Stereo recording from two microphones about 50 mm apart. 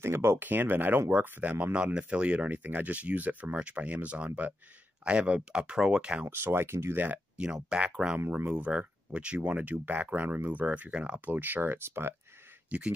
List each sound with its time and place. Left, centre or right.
0.0 s speech: right
0.4 s speech: right; by 6.2 s centre
6.3 s speech: right
7.3 s speech: centre
11.1 s speech: right
12.6 s speech: right